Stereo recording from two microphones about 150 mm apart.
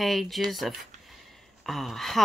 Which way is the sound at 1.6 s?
Centre (ahead or behind).